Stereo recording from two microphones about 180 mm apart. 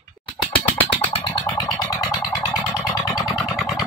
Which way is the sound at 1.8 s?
20° left (ahead or behind).